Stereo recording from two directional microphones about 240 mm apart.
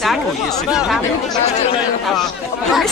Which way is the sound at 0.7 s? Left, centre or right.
Centre.